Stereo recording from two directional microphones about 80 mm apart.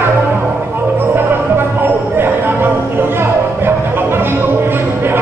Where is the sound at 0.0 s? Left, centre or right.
Right.